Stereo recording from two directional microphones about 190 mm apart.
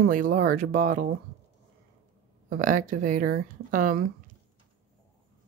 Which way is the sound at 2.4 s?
45° right (ahead or behind).